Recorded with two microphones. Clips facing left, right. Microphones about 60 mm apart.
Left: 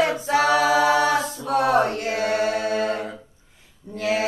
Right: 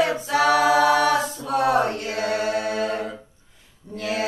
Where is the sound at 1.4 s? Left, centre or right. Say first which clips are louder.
Left 1 dB; left.